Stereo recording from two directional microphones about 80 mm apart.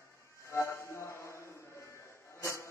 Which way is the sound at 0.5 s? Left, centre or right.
Left.